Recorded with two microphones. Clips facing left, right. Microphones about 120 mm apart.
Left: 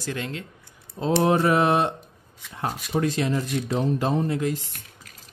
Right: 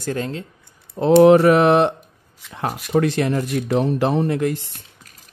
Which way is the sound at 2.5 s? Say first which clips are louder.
Right 6 dB; 85° right.